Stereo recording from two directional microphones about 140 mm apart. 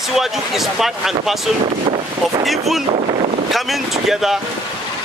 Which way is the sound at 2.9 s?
50° right (ahead or behind).